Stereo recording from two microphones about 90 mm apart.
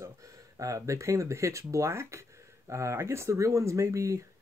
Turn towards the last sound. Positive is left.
turn(degrees=-35)  # may be behind; listen again after turning